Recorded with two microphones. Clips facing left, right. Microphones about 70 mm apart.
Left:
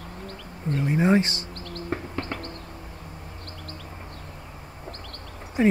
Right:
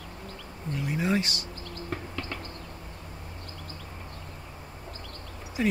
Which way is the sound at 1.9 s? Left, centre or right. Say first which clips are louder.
Left 5 dB; left.